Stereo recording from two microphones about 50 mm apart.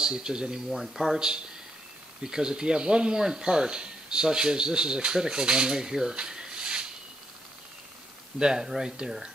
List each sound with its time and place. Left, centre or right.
0.0 s speech: centre
0.7 s speech: centre
8.4 s speech: centre